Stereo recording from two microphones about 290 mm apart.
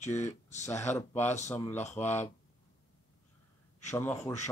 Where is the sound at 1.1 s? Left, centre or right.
Left.